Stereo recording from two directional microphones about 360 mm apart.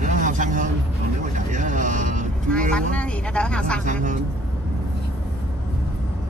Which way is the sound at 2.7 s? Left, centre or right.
Centre.